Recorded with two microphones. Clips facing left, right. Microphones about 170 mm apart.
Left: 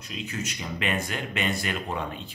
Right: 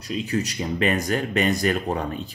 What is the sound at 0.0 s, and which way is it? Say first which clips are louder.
Speech: right 9 dB; 35° right (ahead or behind).